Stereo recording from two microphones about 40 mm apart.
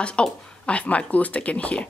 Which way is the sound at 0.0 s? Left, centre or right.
Left.